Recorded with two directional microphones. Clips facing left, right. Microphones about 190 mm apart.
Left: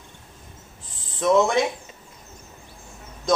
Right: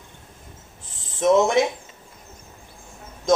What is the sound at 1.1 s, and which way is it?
Speech, 20° right (ahead or behind).